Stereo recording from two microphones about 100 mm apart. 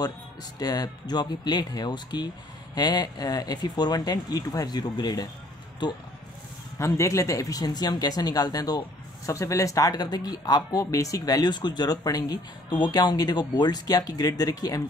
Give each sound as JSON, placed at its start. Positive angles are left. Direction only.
{"t": 0.0, "sound": "speech", "side_deg": 40}
{"t": 6.8, "sound": "speech", "side_deg": 30}